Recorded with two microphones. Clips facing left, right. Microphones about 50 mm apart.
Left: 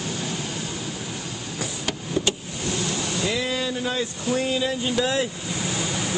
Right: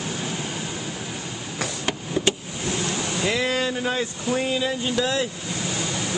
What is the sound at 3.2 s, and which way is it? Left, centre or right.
Speech, right.